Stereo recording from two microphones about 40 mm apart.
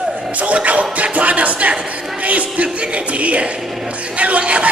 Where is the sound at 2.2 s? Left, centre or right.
Right.